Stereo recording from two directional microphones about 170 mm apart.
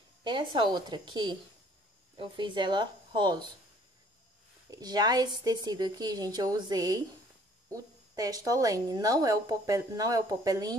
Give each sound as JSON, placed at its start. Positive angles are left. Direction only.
{"t": 0.2, "sound": "a woman's voice", "side_deg": -30}
{"t": 4.6, "sound": "a woman's voice", "side_deg": -20}